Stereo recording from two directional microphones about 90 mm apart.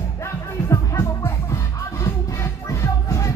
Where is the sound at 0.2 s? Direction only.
30° left (ahead or behind).